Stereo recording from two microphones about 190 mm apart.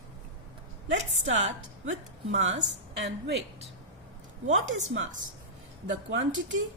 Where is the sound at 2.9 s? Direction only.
65° right (ahead or behind).